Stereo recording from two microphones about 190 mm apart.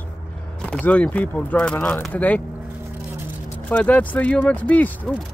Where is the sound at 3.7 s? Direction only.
10° left (ahead or behind).